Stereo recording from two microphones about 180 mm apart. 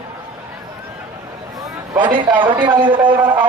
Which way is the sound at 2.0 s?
25° right (ahead or behind).